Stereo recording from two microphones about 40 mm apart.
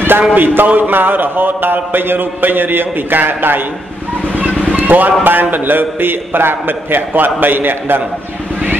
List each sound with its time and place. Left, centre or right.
0.3 s speech: right
4.4 s a sound: right
5.2 s speech: right